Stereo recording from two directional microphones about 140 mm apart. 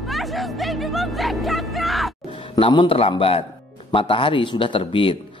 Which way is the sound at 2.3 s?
40° left (ahead or behind).